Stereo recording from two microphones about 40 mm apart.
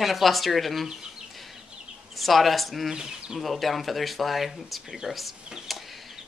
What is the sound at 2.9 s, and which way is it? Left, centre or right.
Speech, centre.